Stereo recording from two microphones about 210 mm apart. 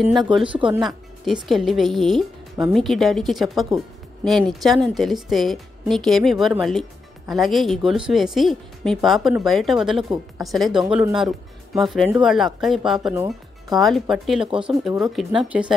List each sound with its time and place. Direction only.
0.2 s speech: 25° right (ahead or behind)
0.7 s speech: centre (ahead or behind)
13.1 s speech: 10° right (ahead or behind)
13.7 s speech: centre (ahead or behind)